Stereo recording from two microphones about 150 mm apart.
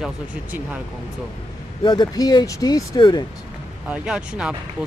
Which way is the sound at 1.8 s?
30° left (ahead or behind).